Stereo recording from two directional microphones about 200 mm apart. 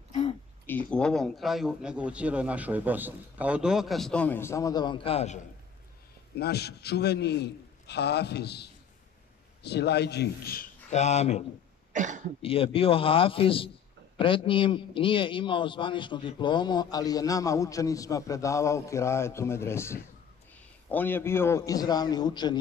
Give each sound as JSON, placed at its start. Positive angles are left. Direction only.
{"t": 0.7, "sound": "a man's voice", "side_deg": 5}
{"t": 6.3, "sound": "a man's voice", "side_deg": 55}
{"t": 10.9, "sound": "speech", "side_deg": 35}
{"t": 11.9, "sound": "cough", "side_deg": -40}
{"t": 12.4, "sound": "a man's voice", "side_deg": 30}